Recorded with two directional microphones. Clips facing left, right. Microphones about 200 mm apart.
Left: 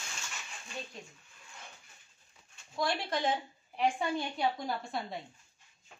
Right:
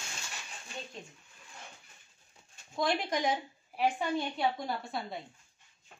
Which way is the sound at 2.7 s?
20° right (ahead or behind).